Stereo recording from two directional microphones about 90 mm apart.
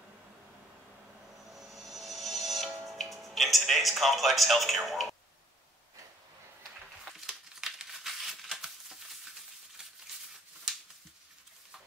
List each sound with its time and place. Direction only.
1.5 s vehicle: centre (ahead or behind)
2.9 s music: centre (ahead or behind)
7.2 s crumpling: centre (ahead or behind)